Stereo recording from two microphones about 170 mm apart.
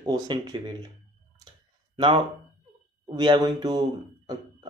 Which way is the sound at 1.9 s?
30° right (ahead or behind).